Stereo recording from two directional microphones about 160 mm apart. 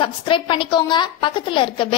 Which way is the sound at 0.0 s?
30° left (ahead or behind).